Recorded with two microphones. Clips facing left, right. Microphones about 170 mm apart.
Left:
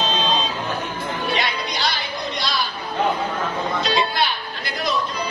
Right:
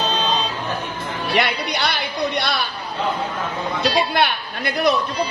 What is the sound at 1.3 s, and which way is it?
Music, 65° right (ahead or behind).